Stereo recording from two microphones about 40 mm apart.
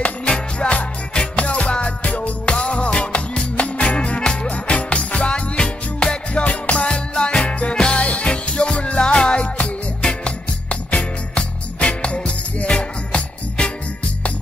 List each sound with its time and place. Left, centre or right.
0.6 s music: left
2.4 s music: left